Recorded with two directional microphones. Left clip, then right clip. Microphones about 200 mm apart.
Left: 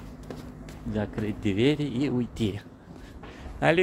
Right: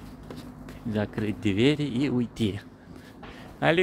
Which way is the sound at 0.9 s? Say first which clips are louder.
Right 1 dB; 20° right (ahead or behind).